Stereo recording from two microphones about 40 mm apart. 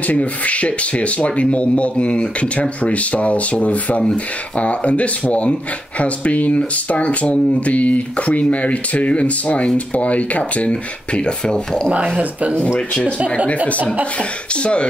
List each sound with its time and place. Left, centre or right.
0.0 s speech: left
10.7 s speech: left
12.2 s speech: right
12.7 s speech: left
14.1 s speech: left